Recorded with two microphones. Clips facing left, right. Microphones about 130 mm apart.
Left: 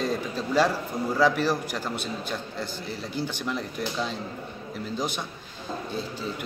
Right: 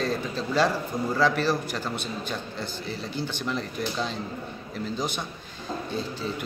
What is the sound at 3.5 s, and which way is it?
Speech, 5° left (ahead or behind).